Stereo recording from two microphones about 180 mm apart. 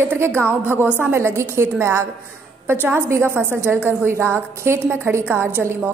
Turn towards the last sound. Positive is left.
turn(degrees=-15)  # may be behind; listen again after turning